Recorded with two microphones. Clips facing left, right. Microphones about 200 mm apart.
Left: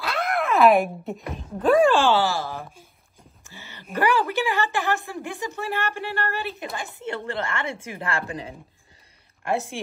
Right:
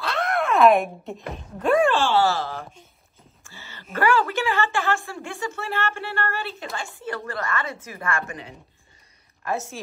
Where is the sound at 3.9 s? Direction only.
15° left (ahead or behind).